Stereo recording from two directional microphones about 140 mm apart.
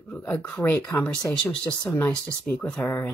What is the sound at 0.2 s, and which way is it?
Speech, 10° left (ahead or behind).